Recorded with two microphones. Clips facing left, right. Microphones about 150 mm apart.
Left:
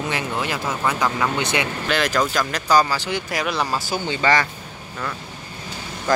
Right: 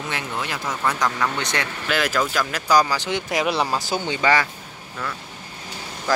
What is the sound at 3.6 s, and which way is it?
Speech, 20° right (ahead or behind).